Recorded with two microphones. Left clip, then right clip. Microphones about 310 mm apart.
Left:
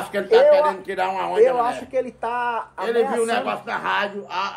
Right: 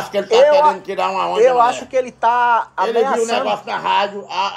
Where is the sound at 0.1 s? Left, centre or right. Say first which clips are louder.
Right 3 dB; centre.